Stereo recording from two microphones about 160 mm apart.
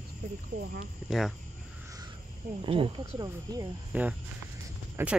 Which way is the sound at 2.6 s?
35° right (ahead or behind).